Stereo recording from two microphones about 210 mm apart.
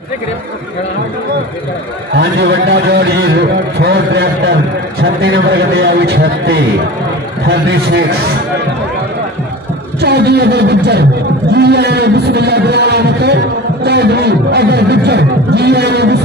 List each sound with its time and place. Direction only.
2.1 s speech: 50° right (ahead or behind)
10.0 s speech: 50° right (ahead or behind)